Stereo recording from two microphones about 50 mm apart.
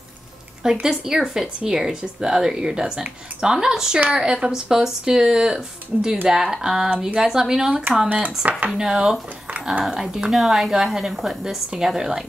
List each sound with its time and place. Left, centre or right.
0.8 s speech: centre
6.2 s speech: centre